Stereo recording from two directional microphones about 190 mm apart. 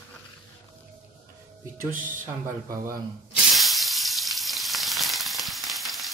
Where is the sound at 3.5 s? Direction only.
Centre (ahead or behind).